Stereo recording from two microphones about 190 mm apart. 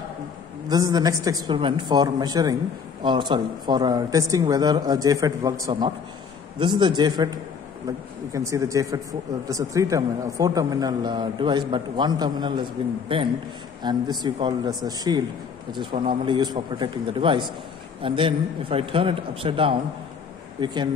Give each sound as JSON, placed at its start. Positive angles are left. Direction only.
{"t": 0.7, "sound": "speech", "side_deg": -20}
{"t": 8.3, "sound": "speech", "side_deg": -15}